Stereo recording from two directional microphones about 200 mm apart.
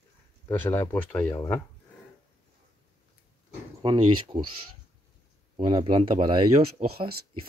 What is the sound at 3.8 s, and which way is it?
Speech, 25° right (ahead or behind).